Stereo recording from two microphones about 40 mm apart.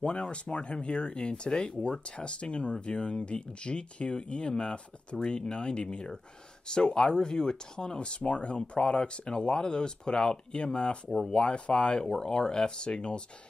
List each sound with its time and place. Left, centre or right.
0.0 s speech: left
11.1 s speech: centre
11.3 s speech: left